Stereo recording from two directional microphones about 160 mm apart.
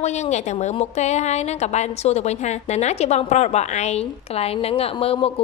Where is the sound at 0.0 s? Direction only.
45° left (ahead or behind).